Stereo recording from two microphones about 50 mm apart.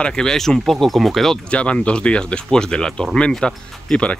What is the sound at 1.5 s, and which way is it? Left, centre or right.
Speech, left.